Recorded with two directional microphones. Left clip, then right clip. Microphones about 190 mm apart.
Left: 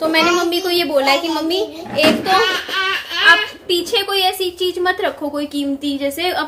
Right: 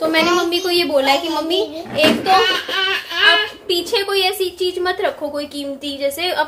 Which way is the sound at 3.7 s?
5° left (ahead or behind).